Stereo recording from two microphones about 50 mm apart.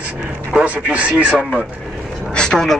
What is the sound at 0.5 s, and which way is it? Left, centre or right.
Speech, right.